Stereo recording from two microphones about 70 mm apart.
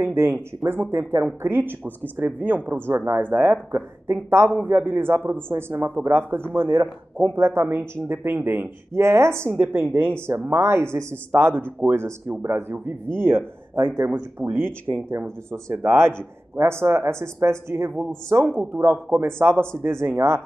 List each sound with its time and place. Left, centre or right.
0.0 s speech: right